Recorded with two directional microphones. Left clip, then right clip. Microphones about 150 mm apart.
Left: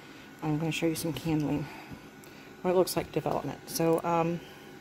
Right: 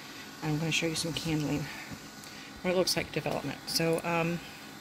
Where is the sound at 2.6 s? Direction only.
25° left (ahead or behind).